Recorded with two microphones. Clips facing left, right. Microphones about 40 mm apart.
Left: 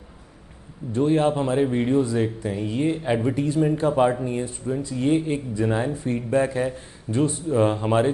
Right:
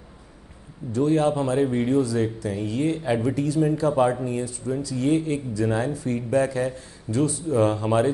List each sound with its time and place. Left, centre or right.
0.9 s a man's voice: left